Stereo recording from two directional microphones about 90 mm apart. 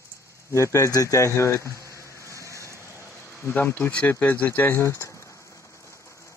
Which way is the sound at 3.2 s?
25° left (ahead or behind).